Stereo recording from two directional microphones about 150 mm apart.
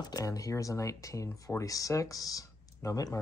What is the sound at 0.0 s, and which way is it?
Speech, 25° left (ahead or behind).